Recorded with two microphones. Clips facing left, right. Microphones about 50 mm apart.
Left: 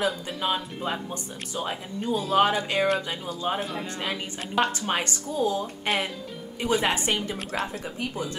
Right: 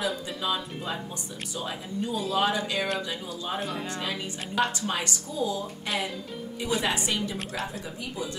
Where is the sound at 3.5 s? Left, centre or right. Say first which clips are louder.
Left 1 dB; centre.